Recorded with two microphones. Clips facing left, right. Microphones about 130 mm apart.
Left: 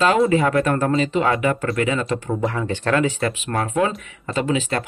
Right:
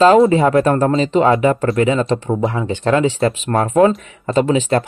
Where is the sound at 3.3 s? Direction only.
40° right (ahead or behind).